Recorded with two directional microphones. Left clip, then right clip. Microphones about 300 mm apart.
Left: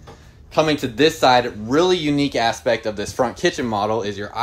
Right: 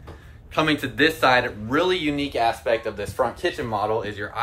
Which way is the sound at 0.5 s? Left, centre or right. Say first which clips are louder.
Left 4 dB; centre.